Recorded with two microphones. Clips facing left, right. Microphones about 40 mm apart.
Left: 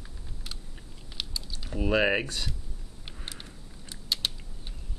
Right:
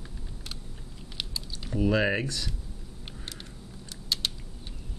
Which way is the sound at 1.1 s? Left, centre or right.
Centre.